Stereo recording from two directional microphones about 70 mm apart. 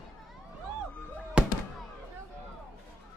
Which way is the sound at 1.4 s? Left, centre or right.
Centre.